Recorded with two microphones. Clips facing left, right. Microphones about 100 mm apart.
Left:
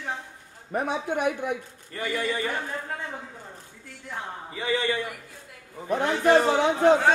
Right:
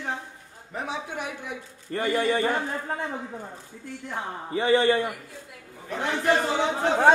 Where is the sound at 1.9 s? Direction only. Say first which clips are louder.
Right 5 dB; 35° right (ahead or behind).